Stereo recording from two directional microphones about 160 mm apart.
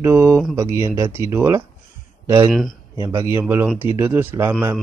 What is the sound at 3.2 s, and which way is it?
Speech, 15° right (ahead or behind).